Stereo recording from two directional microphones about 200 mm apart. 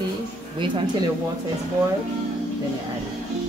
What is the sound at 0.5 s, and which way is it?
Speech, 25° right (ahead or behind).